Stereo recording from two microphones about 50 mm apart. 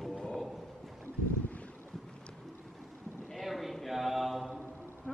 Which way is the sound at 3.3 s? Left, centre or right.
Centre.